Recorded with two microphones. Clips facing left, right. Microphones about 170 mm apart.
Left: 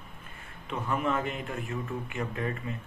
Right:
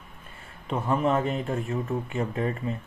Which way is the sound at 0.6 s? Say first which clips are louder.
Right 5 dB; 35° right (ahead or behind).